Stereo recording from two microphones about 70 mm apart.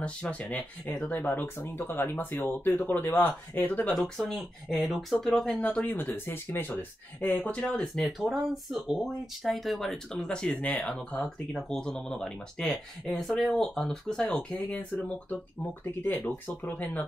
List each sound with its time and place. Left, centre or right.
0.0 s speech: centre
4.2 s speech: centre
5.9 s speech: left
7.6 s speech: centre
16.7 s speech: left